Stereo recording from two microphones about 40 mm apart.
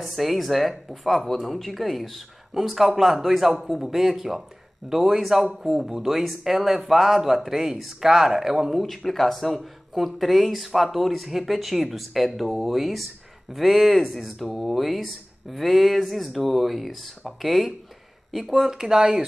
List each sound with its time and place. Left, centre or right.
0.0 s speech: centre
8.8 s speech: centre
18.7 s speech: centre